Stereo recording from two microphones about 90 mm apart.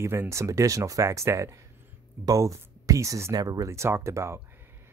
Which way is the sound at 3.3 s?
45° right (ahead or behind).